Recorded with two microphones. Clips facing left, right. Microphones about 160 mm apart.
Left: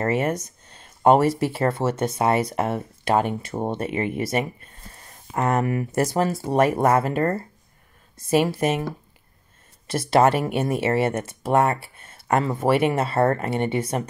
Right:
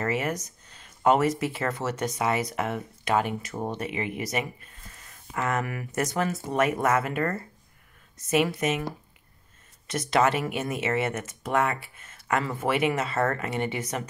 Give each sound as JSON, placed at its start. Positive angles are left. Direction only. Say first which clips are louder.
{"t": 0.0, "sound": "speech", "louder": "left 5 dB", "side_deg": 30}
{"t": 9.8, "sound": "speech", "louder": "left 5 dB", "side_deg": 30}